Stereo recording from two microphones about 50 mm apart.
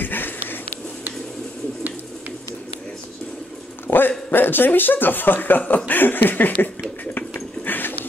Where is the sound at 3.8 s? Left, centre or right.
Left.